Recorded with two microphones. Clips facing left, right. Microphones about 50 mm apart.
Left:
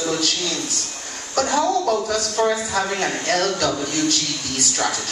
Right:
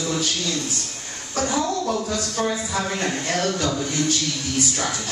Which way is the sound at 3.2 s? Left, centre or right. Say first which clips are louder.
Left 4 dB; left.